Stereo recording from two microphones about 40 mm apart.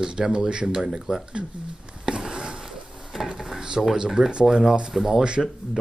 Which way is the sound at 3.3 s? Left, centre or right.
Centre.